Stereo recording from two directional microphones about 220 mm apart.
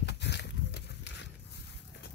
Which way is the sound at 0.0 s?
50° left (ahead or behind).